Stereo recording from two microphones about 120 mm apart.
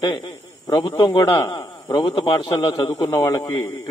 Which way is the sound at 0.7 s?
40° left (ahead or behind).